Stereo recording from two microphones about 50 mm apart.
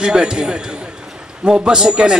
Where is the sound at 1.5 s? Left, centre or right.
Centre.